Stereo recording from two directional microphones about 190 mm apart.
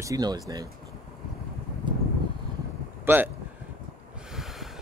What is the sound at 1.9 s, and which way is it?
Vehicle, 25° right (ahead or behind).